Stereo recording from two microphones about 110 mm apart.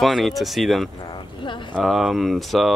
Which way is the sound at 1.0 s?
45° left (ahead or behind).